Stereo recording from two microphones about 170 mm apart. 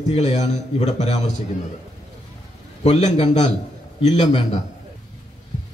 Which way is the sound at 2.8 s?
40° left (ahead or behind).